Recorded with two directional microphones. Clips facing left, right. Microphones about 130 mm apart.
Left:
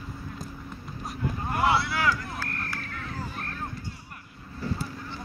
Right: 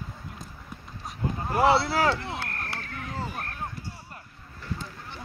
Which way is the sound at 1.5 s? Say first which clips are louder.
Right 4 dB; 30° right (ahead or behind).